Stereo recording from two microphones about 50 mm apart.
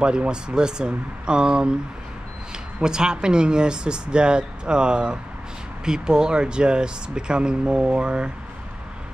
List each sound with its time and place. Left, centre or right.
0.0 s speech: centre
2.8 s speech: centre